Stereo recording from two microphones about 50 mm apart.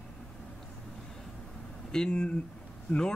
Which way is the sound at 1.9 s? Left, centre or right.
Centre.